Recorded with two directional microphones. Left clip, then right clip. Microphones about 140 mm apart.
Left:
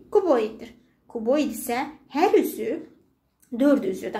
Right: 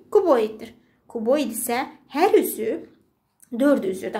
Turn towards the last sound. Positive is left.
turn(degrees=-20)  # may be behind; listen again after turning